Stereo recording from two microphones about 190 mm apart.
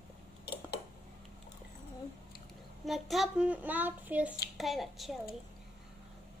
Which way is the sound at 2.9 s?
Centre (ahead or behind).